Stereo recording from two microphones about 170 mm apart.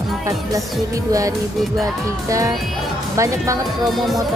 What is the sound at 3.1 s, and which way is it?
Speech, 20° right (ahead or behind).